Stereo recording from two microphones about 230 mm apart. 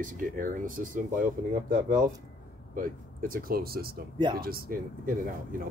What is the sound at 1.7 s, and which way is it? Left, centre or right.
Speech, right.